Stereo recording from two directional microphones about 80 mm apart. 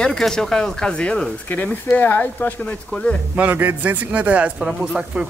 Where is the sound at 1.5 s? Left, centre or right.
Left.